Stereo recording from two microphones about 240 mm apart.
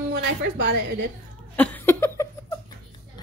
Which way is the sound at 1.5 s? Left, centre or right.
Centre.